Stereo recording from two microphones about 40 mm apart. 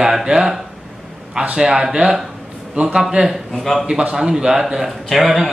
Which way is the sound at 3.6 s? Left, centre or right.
Centre.